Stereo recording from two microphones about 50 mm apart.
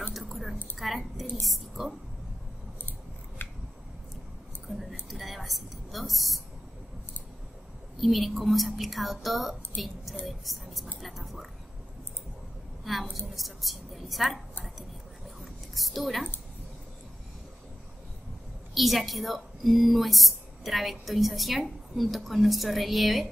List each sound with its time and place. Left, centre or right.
0.1 s keys jangling: centre
0.7 s a woman's voice: centre
3.4 s scissors: left
4.6 s a woman's voice: centre
8.0 s a woman's voice: centre
12.8 s a woman's voice: centre
15.4 s a sound: centre
18.8 s a woman's voice: centre